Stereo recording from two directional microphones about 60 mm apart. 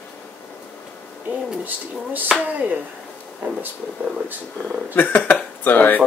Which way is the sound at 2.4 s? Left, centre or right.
Right.